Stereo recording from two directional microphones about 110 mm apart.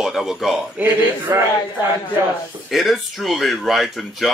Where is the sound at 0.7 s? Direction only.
20° right (ahead or behind).